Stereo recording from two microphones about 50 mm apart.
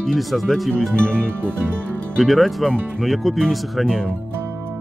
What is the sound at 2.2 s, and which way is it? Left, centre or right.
Speech, centre.